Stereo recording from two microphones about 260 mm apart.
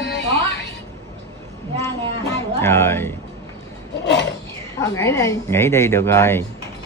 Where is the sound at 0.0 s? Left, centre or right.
Left.